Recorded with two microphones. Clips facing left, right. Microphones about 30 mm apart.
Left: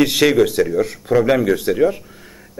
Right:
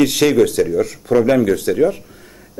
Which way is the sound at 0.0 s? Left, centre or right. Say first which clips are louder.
Right 1 dB; centre.